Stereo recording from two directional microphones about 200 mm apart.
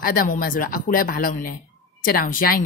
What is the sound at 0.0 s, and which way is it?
Speech, 45° left (ahead or behind).